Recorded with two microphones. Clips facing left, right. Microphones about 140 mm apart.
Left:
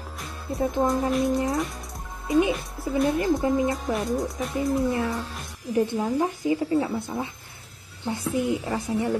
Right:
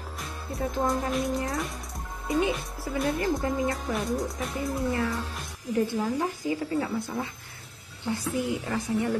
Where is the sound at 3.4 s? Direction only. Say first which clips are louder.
Left 5 dB; 20° left (ahead or behind).